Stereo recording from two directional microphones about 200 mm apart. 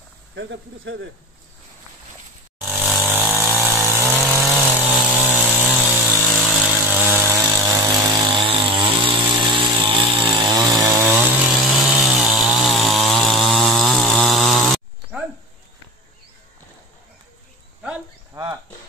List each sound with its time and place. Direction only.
0.4 s speech: 65° right (ahead or behind)
2.6 s vehicle: 10° right (ahead or behind)
3.1 s power tool: 10° right (ahead or behind)
6.6 s chainsaw: 10° right (ahead or behind)
17.8 s a sound: 10° right (ahead or behind)